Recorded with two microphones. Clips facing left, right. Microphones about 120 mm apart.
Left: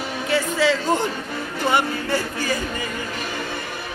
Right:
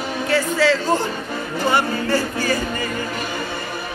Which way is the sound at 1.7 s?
20° left (ahead or behind).